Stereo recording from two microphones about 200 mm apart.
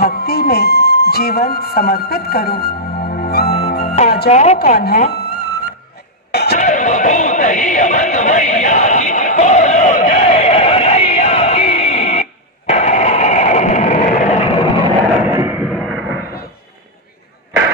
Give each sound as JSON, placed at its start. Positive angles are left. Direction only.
{"t": 0.0, "sound": "music", "side_deg": 50}
{"t": 4.3, "sound": "a woman's voice", "side_deg": 30}
{"t": 4.7, "sound": "speech", "side_deg": 50}
{"t": 5.1, "sound": "music", "side_deg": 55}
{"t": 6.6, "sound": "music", "side_deg": 40}
{"t": 14.4, "sound": "vehicle", "side_deg": 25}
{"t": 15.2, "sound": "a sound", "side_deg": -10}